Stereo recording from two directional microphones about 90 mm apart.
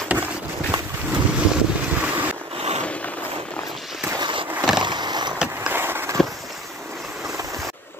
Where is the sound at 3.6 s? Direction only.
Centre (ahead or behind).